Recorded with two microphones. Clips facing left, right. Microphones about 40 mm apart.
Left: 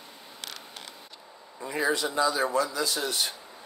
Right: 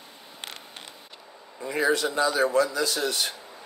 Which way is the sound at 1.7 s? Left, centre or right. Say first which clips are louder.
Right 3 dB; right.